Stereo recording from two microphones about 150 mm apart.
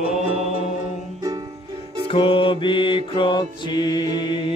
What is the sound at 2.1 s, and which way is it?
Mantra, 35° left (ahead or behind).